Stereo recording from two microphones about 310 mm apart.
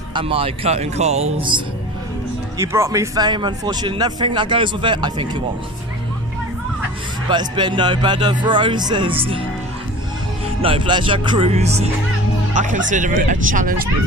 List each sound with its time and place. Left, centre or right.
0.1 s speech: centre
2.6 s speech: centre
7.2 s speech: centre
10.6 s speech: centre